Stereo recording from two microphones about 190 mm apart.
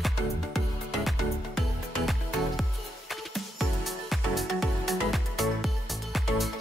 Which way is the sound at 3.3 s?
Centre (ahead or behind).